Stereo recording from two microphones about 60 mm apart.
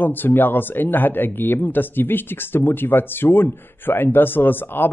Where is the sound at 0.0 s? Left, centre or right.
Left.